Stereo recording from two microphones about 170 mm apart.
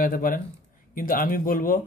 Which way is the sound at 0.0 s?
55° left (ahead or behind).